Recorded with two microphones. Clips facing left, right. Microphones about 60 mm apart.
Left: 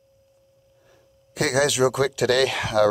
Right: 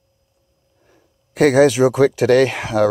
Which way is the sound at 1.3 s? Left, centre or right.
Right.